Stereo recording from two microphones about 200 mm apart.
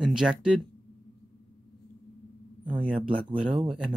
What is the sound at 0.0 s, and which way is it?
Speech, 5° right (ahead or behind).